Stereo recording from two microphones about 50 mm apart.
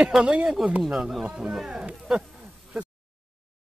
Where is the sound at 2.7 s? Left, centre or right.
Centre.